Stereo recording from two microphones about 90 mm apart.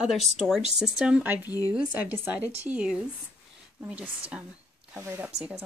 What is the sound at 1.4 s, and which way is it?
Speech, 45° left (ahead or behind).